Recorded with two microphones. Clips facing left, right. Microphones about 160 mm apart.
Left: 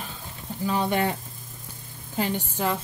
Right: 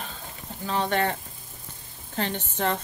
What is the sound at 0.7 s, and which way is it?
Speech, 10° left (ahead or behind).